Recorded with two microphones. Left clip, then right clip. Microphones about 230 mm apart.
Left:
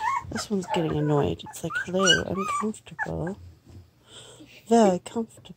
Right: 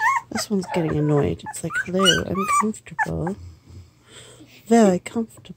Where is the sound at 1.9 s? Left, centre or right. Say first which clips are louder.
Right 3 dB; centre.